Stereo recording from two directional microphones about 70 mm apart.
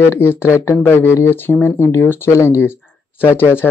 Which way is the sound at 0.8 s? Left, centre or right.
Left.